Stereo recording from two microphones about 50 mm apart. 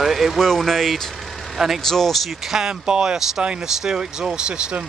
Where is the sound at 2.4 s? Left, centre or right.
Centre.